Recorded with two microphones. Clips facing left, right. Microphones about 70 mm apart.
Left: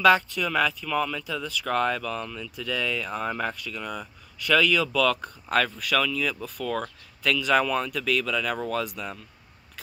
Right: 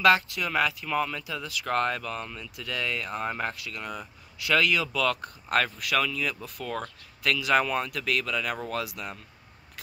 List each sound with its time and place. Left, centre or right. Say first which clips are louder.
0.0 s speech: left 2 dB; centre